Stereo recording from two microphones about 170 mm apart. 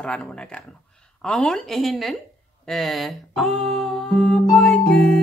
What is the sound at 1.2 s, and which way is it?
Speech, 5° left (ahead or behind).